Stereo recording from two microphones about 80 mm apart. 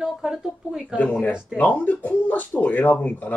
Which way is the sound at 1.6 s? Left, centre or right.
Left.